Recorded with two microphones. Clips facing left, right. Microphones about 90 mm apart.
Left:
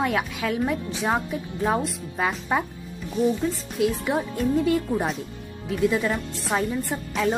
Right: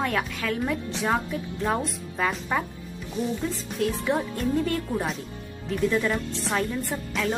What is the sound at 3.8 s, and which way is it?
Speech, 10° left (ahead or behind).